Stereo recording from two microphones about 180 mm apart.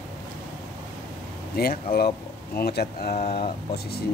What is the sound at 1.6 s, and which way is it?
Speech, 60° left (ahead or behind).